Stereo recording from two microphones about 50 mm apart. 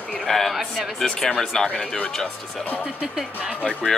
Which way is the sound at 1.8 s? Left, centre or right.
Centre.